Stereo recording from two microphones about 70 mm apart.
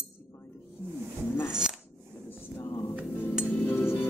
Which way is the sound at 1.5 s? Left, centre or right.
Centre.